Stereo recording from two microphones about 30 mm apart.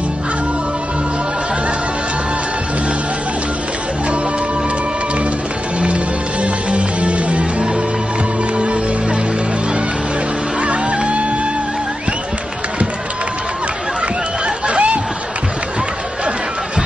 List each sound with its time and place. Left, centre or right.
6.4 s music: right
10.6 s music: right
14.7 s a sound: right